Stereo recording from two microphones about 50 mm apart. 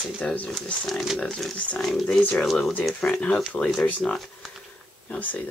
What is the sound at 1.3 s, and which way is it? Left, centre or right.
Speech, centre.